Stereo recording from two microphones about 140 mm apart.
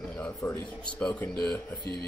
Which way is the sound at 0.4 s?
20° left (ahead or behind).